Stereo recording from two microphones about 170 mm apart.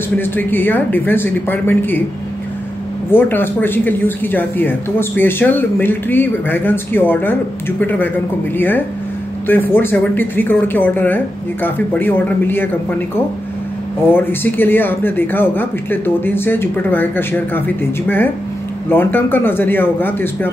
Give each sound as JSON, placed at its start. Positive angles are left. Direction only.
{"t": 0.2, "sound": "speech", "side_deg": 10}
{"t": 3.1, "sound": "speech", "side_deg": 10}
{"t": 14.1, "sound": "speech", "side_deg": 10}